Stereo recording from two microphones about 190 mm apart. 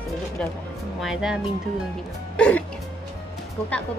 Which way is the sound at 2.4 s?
5° left (ahead or behind).